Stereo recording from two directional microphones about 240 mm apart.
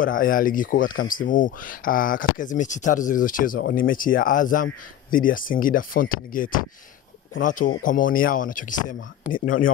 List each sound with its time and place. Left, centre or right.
0.0 s speech: left